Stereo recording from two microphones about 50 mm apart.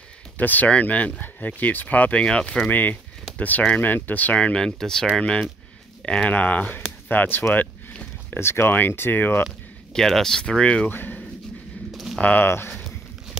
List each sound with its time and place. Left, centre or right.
0.4 s speech: left
2.2 s speech: centre
2.7 s speech: left
4.6 s speech: centre
6.0 s speech: centre
6.3 s speech: left
8.3 s speech: left
9.9 s speech: centre
10.6 s speech: left
10.9 s speech: left
11.9 s a sound: centre
12.2 s speech: left
12.7 s walk: centre